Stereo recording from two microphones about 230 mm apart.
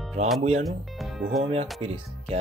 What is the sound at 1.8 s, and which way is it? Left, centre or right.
Speech, right.